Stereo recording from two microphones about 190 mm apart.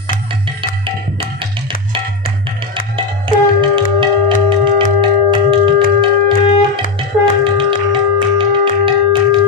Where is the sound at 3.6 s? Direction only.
25° right (ahead or behind).